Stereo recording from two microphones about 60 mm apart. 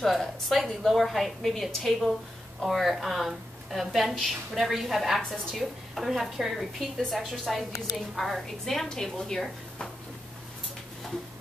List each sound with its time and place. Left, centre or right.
0.0 s a woman's voice: centre